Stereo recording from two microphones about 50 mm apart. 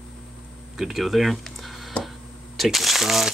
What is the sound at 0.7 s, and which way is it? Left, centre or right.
Speech, centre.